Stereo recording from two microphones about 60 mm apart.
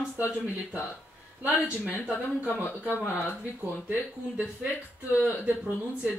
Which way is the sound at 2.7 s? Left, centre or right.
Left.